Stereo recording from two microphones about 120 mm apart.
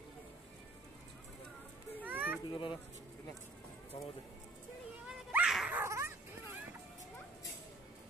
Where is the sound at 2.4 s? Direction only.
45° left (ahead or behind).